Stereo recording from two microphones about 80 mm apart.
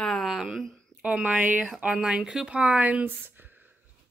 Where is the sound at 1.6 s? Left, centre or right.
Centre.